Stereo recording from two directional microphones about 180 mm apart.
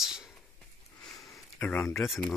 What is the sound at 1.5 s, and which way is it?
Speech, 5° left (ahead or behind).